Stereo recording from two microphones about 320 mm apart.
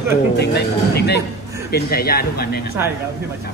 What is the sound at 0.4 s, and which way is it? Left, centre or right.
Speech, left.